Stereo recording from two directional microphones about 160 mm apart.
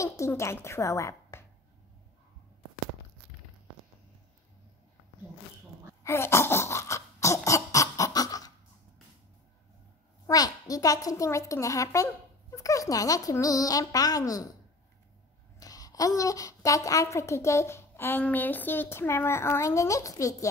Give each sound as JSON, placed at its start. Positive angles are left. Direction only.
{"t": 0.0, "sound": "a woman's voice", "side_deg": 20}
{"t": 6.0, "sound": "a sound", "side_deg": 15}
{"t": 10.2, "sound": "a woman's voice", "side_deg": 25}
{"t": 15.6, "sound": "a woman's voice", "side_deg": 25}